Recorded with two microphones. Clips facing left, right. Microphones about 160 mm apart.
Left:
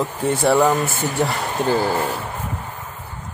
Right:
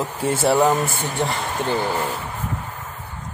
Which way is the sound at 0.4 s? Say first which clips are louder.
Left 1 dB; 5° right (ahead or behind).